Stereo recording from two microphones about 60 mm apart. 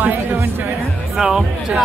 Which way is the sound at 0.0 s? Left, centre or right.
Right.